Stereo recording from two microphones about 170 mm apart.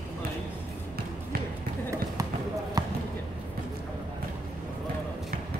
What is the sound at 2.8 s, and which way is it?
Basketball bounce, 20° right (ahead or behind).